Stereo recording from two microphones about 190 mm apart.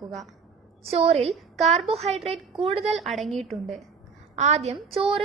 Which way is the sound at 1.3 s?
Centre (ahead or behind).